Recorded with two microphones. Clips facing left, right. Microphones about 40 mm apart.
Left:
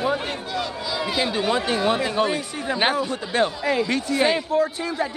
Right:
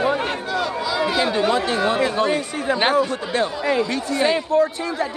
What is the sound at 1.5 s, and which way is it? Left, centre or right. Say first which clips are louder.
Speech: right 2 dB; centre.